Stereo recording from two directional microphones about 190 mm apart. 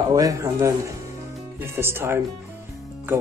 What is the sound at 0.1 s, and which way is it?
Speech, 20° right (ahead or behind).